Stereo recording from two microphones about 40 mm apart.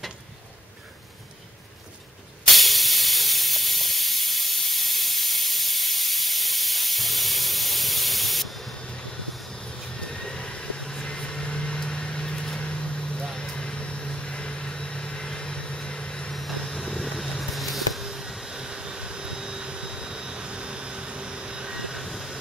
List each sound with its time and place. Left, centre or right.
2.4 s hiss: centre
10.4 s vehicle: left
16.3 s vehicle: centre
17.2 s a sound: centre
18.0 s a sound: centre
18.3 s jet engine: centre
22.0 s vehicle: centre